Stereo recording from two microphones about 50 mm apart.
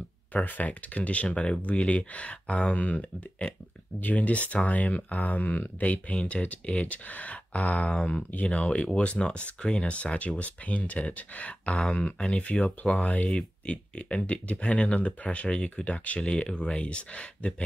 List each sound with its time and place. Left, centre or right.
0.3 s speech: left
7.8 s speech: centre
9.6 s speech: centre
9.8 s speech: left
11.7 s speech: centre